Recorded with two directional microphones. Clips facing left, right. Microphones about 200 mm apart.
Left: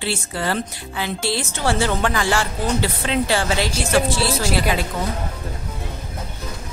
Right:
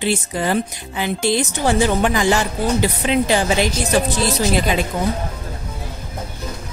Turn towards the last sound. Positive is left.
turn(degrees=-20)  # may be behind; listen again after turning